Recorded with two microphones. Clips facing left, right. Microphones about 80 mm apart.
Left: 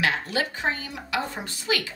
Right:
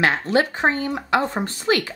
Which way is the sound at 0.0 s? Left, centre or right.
Right.